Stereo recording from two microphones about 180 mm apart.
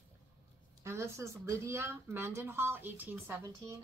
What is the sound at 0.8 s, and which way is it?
A woman's voice, 15° right (ahead or behind).